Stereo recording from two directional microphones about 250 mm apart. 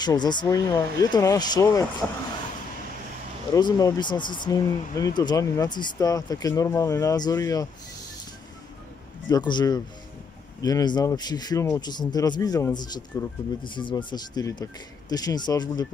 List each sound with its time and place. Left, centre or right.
0.0 s speech: centre
3.5 s speech: centre
9.3 s speech: centre